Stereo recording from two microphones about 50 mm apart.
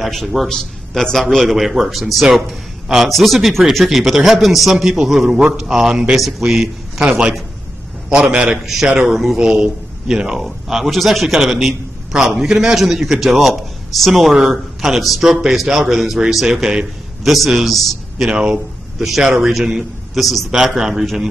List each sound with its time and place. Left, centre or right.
0.0 s a man's voice: centre
0.5 s a man's voice: centre
7.1 s a man's voice: right
8.5 s a man's voice: centre
10.4 s a man's voice: centre
17.5 s a man's voice: centre